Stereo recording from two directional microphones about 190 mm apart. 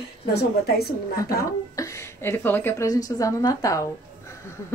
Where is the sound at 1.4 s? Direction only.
15° left (ahead or behind).